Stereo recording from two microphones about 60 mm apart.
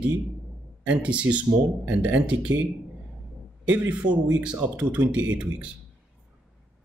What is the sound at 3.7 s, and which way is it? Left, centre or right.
Speech, right.